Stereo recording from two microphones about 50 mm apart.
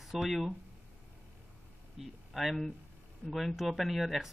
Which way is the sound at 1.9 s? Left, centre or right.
Centre.